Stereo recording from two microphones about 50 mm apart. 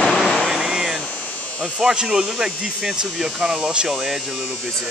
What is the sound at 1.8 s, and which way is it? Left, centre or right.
Speech, centre.